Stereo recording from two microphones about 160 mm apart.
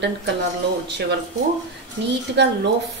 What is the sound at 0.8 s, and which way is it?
Speech, 90° right.